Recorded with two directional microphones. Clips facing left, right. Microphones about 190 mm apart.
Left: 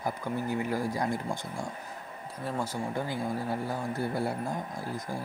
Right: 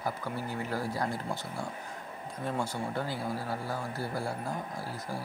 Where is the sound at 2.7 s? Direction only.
15° left (ahead or behind).